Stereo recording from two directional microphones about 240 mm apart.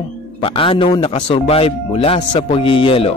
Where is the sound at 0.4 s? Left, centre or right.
Left.